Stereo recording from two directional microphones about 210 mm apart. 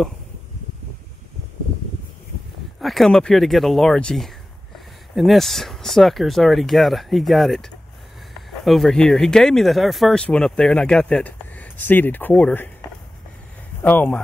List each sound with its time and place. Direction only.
2.8 s speech: centre (ahead or behind)
13.8 s speech: 5° left (ahead or behind)